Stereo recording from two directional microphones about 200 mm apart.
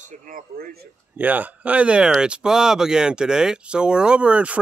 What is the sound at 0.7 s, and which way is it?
Speech, 10° right (ahead or behind).